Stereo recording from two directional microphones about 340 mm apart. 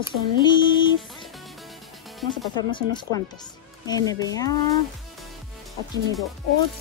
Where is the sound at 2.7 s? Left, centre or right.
Centre.